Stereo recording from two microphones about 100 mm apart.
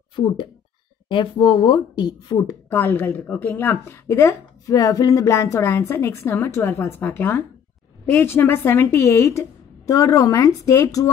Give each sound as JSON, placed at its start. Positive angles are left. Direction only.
{"t": 0.1, "sound": "speech", "side_deg": 55}
{"t": 2.7, "sound": "a woman's voice", "side_deg": 20}